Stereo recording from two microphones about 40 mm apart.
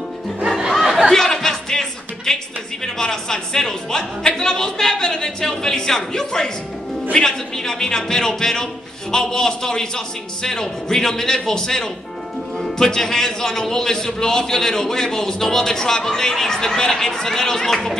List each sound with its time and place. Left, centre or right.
0.7 s chatter: centre
1.1 s a man's voice: centre